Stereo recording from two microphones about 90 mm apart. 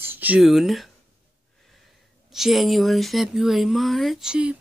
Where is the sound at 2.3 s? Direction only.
5° right (ahead or behind).